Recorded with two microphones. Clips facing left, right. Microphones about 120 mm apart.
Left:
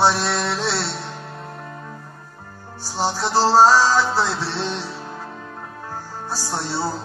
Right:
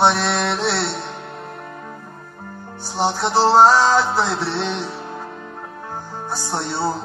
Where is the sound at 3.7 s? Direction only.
60° right (ahead or behind).